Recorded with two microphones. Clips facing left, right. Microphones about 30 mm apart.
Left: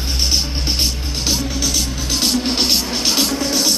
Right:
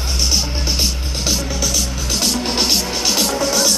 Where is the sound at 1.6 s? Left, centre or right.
Left.